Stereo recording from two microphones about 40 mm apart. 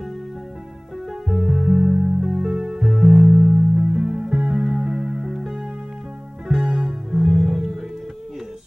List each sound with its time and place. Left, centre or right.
1.3 s music: centre